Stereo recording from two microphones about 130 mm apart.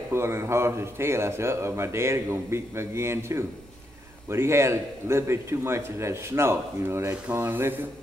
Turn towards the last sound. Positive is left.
turn(degrees=-15)  # may be behind; listen again after turning